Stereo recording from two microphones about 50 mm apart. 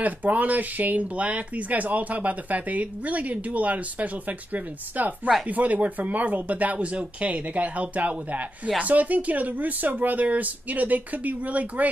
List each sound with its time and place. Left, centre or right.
0.0 s speech: right